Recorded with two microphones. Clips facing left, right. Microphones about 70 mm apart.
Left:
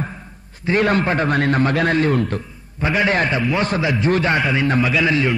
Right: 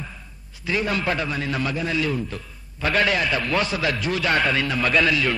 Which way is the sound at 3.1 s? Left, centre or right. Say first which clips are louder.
Left 4 dB; left.